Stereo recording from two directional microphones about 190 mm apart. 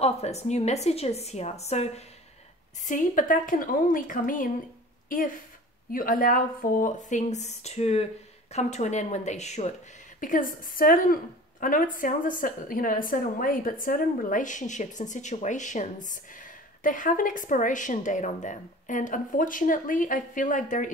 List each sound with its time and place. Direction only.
0.0 s a woman's voice: 35° left (ahead or behind)
5.9 s a woman's voice: 50° left (ahead or behind)